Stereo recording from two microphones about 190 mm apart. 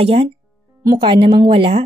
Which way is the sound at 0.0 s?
30° right (ahead or behind).